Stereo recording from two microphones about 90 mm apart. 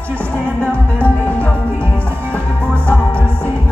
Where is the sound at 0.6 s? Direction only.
15° left (ahead or behind).